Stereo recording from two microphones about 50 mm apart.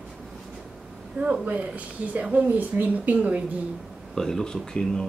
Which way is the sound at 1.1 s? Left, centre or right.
Right.